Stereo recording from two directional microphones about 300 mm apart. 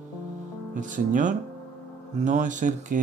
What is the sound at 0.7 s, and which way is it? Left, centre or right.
Speech, right.